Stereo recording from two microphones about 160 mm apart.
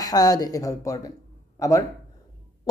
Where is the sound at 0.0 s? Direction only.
25° left (ahead or behind).